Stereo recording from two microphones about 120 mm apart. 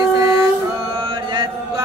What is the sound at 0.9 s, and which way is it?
Chant, 40° right (ahead or behind).